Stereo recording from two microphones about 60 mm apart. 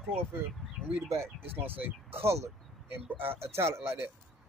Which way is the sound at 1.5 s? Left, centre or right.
Right.